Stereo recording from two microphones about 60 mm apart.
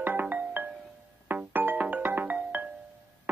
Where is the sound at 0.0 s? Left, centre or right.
Right.